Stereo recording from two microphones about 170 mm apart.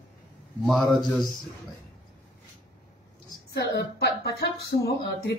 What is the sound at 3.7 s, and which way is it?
Speech, 80° left.